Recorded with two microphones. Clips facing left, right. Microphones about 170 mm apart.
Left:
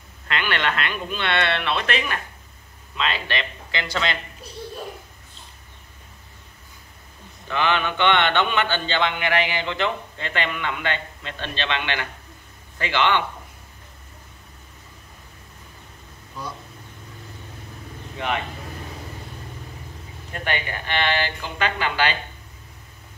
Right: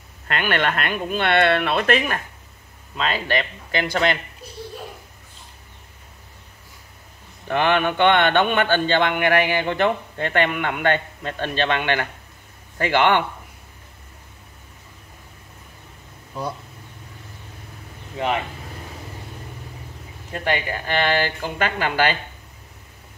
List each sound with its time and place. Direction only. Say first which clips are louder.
0.3 s speech: right 3 dB; 50° right (ahead or behind)
7.4 s speech: right 4 dB; 50° right (ahead or behind)
16.3 s speech: right 6 dB; 60° right (ahead or behind)
20.8 s speech: right 3 dB; 40° right (ahead or behind)